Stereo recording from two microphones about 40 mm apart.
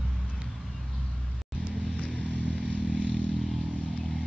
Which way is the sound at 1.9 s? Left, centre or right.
Left.